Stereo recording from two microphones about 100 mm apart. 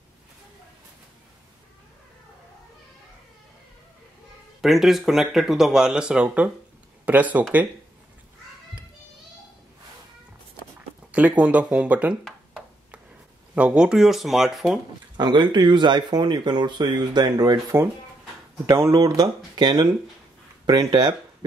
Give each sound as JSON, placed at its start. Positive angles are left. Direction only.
{"t": 4.6, "sound": "speech", "side_deg": 0}
{"t": 11.1, "sound": "speech", "side_deg": -15}
{"t": 13.6, "sound": "speech", "side_deg": -10}
{"t": 15.1, "sound": "speech", "side_deg": -50}